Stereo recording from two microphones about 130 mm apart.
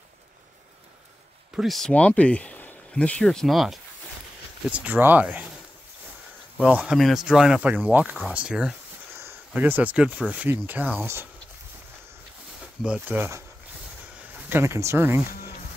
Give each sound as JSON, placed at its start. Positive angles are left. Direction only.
{"t": 1.6, "sound": "speech", "side_deg": 0}
{"t": 4.6, "sound": "speech", "side_deg": -10}
{"t": 6.6, "sound": "speech", "side_deg": -10}
{"t": 12.8, "sound": "speech", "side_deg": -10}
{"t": 14.5, "sound": "speech", "side_deg": -20}